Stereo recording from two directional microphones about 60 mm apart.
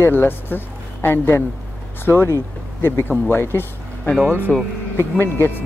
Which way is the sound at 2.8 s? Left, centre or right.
Left.